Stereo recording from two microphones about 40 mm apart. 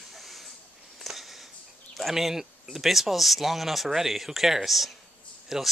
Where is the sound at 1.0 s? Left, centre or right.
Centre.